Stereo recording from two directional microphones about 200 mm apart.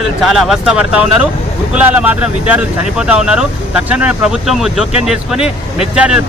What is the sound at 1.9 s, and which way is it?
Speech, 10° right (ahead or behind).